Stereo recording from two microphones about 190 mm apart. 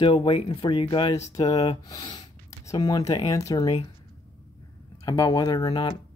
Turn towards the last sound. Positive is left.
turn(degrees=20)  # may be behind; listen again after turning